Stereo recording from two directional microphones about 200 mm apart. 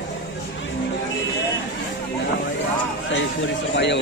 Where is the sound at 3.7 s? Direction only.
60° left (ahead or behind).